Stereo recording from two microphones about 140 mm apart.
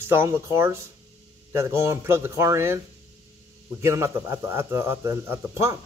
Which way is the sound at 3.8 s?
20° right (ahead or behind).